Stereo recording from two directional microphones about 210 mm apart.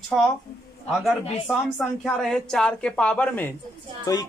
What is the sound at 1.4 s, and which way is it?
A woman's voice, centre (ahead or behind).